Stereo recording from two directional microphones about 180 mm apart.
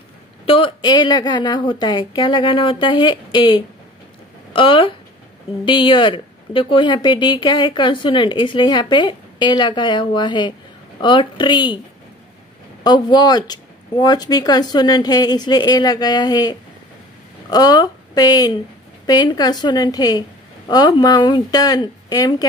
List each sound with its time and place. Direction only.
0.5 s speech: 30° left (ahead or behind)
12.8 s a woman's voice: 25° left (ahead or behind)